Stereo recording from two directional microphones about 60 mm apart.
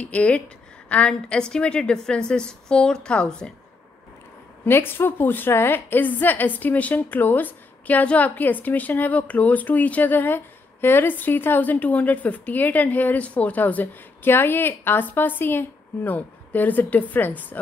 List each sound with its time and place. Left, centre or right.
0.0 s a woman's voice: left
4.6 s a woman's voice: left